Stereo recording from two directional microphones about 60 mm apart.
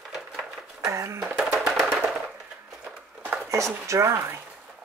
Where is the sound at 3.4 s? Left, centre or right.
Right.